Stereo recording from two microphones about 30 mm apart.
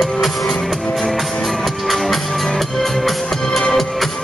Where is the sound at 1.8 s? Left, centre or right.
Centre.